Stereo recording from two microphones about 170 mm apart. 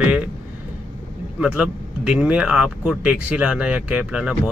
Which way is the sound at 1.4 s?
5° right (ahead or behind).